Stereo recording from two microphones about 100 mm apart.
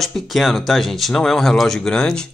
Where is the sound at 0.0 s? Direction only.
Centre (ahead or behind).